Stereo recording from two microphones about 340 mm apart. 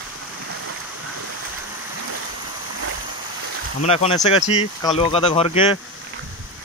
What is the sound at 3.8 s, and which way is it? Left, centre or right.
Speech, centre.